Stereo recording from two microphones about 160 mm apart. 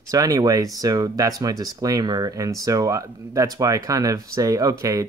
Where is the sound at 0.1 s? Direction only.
20° right (ahead or behind).